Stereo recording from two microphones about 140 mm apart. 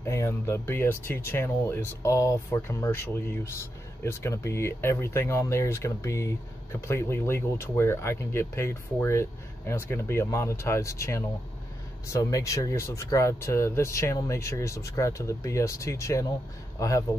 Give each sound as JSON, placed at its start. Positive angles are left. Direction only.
{"t": 0.0, "sound": "speech", "side_deg": 20}